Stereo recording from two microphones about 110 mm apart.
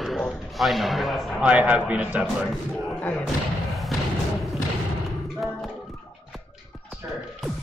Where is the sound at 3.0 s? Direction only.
15° left (ahead or behind).